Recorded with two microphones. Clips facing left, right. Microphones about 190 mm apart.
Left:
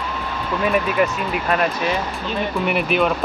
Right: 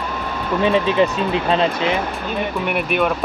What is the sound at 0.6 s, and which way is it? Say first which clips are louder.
Speech: right 3 dB; 25° right (ahead or behind).